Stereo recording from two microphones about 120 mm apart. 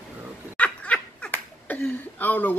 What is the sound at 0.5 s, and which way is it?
Speech, 10° left (ahead or behind).